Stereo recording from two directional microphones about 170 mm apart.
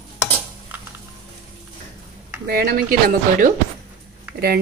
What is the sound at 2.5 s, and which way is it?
Speech, 65° right (ahead or behind).